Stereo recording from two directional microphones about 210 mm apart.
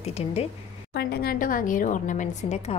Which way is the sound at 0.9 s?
45° left (ahead or behind).